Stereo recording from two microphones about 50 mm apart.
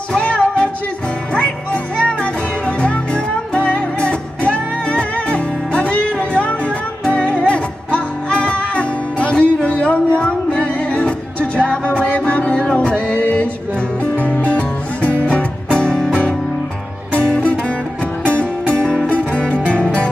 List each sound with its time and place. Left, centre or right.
0.2 s music: left
17.1 s music: left
19.0 s music: left